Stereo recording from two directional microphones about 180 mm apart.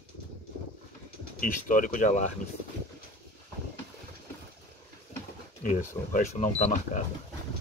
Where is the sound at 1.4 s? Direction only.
45° left (ahead or behind).